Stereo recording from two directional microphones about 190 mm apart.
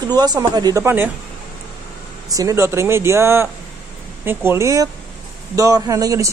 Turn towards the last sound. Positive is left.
turn(degrees=-15)  # may be behind; listen again after turning